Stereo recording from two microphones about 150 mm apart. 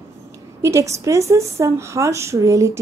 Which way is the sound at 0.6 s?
20° right (ahead or behind).